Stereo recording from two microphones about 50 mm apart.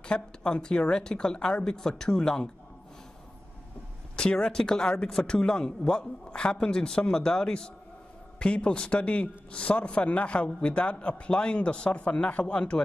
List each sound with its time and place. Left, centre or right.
0.0 s speech: centre
4.2 s a man's voice: centre